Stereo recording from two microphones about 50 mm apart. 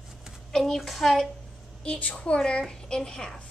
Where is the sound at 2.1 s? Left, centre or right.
Left.